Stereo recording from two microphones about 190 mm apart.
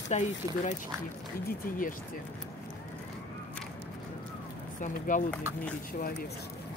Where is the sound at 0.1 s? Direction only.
40° left (ahead or behind).